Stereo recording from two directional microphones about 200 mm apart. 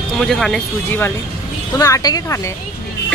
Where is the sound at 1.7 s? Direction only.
15° left (ahead or behind).